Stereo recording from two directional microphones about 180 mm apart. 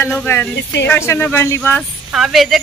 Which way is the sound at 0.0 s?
10° left (ahead or behind).